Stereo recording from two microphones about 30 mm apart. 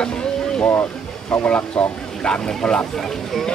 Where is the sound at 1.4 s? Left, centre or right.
Left.